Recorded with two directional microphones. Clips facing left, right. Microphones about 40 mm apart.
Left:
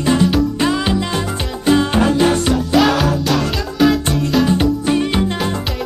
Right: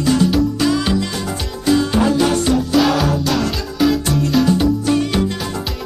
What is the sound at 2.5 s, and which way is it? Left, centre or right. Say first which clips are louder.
Music: left 1 dB; centre.